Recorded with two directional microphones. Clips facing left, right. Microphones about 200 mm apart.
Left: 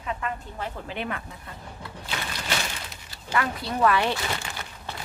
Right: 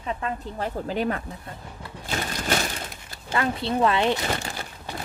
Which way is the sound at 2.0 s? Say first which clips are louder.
Right 5 dB; 45° right (ahead or behind).